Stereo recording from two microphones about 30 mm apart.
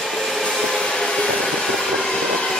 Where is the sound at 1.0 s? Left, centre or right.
Left.